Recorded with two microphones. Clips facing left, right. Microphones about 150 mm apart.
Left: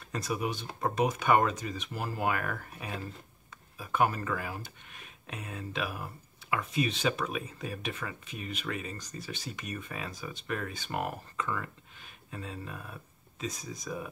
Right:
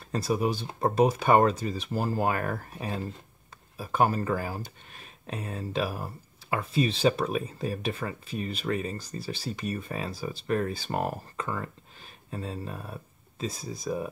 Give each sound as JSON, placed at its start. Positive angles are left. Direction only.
{"t": 0.1, "sound": "speech", "side_deg": -35}